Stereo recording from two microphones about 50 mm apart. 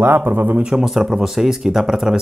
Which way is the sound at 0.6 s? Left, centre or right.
Centre.